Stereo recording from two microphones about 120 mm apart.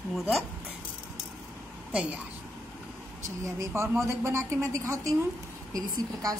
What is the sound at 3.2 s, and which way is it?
Speech, 25° right (ahead or behind).